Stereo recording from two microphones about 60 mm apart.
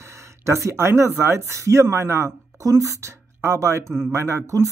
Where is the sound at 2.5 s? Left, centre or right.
Right.